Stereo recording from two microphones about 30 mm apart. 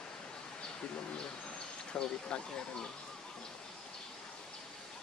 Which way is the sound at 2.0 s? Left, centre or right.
Left.